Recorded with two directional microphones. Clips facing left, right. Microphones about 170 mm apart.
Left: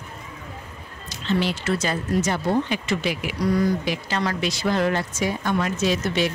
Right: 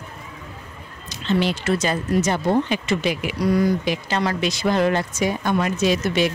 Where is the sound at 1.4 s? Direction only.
20° right (ahead or behind).